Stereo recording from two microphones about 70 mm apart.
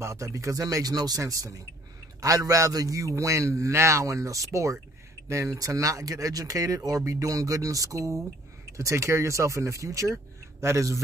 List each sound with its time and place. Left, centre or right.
0.0 s a man's voice: right
1.2 s a man's voice: right